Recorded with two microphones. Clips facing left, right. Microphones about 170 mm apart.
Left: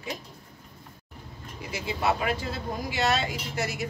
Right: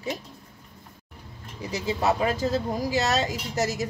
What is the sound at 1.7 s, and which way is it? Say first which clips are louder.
Speech: right 3 dB; 40° right (ahead or behind).